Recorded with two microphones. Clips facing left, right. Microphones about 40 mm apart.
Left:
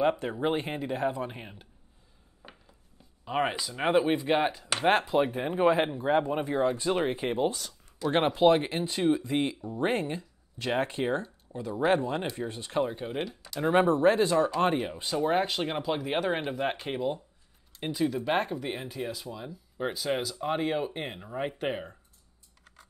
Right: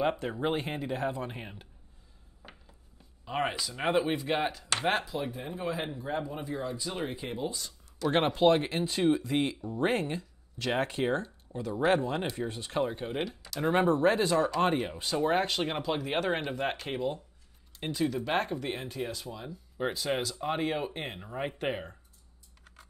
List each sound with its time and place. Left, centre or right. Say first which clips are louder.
0.5 s speech: left 2 dB; centre
2.4 s a sound: left 1 dB; centre
3.3 s speech: left 3 dB; centre
5.0 s speech: left 9 dB; left
8.0 s speech: left 2 dB; centre
12.4 s speech: even; centre
12.7 s speech: left 2 dB; centre